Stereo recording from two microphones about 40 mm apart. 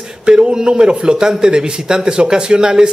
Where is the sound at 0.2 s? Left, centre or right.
Right.